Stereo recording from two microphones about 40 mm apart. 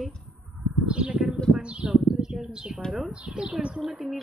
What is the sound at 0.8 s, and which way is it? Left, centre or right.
Speech, right.